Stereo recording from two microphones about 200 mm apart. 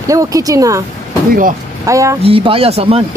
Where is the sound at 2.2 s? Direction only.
25° right (ahead or behind).